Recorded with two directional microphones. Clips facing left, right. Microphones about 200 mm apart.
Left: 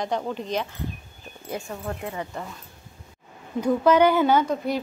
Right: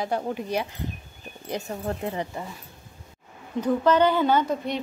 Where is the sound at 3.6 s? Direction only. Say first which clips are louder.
Left 2 dB; 10° left (ahead or behind).